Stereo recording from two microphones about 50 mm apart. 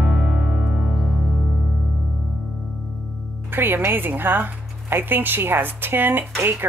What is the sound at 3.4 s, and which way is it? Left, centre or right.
A woman's voice, right.